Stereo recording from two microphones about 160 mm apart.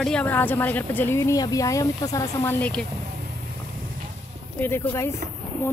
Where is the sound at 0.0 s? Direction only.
5° left (ahead or behind).